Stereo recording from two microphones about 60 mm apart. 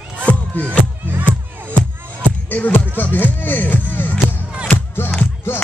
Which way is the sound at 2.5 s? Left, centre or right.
Left.